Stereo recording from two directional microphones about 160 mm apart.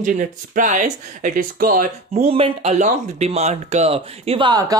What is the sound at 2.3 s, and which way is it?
Speech, 40° right (ahead or behind).